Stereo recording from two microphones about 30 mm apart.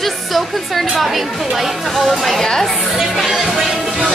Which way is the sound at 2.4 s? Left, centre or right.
Centre.